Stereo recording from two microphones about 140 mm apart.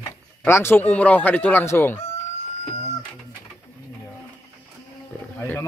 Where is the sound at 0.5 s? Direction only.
15° left (ahead or behind).